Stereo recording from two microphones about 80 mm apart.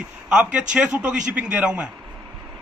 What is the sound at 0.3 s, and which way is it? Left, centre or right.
A man's voice, centre.